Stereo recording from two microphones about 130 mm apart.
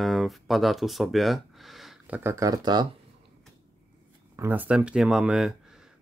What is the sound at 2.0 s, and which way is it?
Speech, 15° right (ahead or behind).